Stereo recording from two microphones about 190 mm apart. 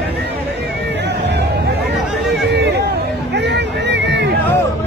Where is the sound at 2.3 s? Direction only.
60° right (ahead or behind).